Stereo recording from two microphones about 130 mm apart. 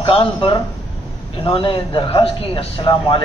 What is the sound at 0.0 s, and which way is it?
A man's voice, 45° left (ahead or behind).